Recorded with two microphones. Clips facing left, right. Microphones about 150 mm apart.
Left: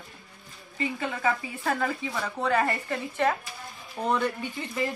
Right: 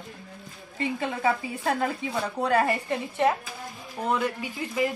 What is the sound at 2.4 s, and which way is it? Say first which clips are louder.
A woman's voice: right 2 dB; 10° right (ahead or behind).